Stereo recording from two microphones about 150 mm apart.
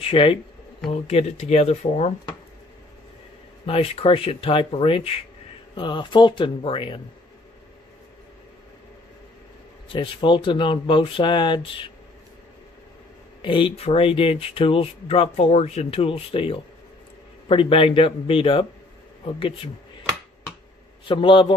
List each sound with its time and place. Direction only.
0.0 s speech: 40° left (ahead or behind)
3.6 s speech: 40° left (ahead or behind)
9.9 s speech: 35° left (ahead or behind)
13.4 s speech: 35° left (ahead or behind)
21.0 s speech: 35° left (ahead or behind)